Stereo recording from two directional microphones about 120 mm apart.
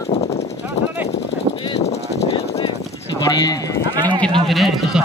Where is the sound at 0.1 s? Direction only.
60° left (ahead or behind).